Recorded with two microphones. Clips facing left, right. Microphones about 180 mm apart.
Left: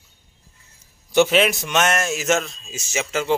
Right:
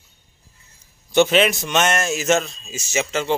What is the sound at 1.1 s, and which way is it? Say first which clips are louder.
Speech: right 1 dB; 5° left (ahead or behind).